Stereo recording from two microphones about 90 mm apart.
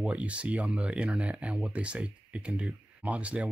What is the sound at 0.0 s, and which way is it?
Speech, 15° right (ahead or behind).